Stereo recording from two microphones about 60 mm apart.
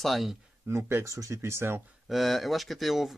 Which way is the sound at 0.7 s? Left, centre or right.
Right.